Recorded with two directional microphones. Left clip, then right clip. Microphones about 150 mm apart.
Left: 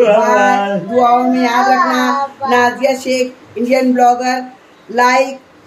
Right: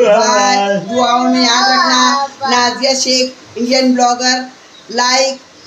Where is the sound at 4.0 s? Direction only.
20° left (ahead or behind).